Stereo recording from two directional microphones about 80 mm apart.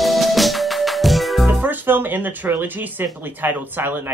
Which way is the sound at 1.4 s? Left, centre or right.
Right.